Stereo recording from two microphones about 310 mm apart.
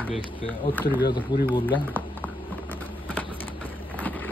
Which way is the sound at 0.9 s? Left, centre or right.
Centre.